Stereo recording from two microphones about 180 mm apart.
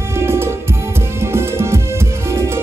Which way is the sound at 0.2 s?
15° right (ahead or behind).